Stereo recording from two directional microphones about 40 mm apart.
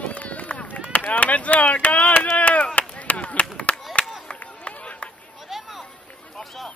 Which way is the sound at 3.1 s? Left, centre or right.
Left.